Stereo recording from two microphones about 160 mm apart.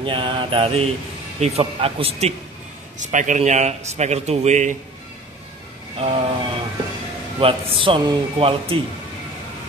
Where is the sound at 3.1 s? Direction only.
50° right (ahead or behind).